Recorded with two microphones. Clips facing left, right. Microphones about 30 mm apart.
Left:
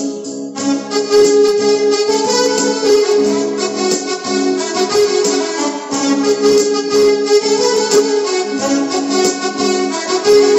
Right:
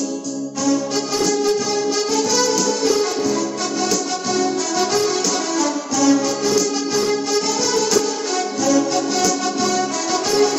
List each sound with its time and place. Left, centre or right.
0.9 s music: left